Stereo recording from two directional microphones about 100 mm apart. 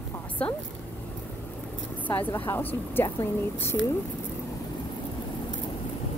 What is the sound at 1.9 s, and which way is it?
A woman's voice, 15° left (ahead or behind).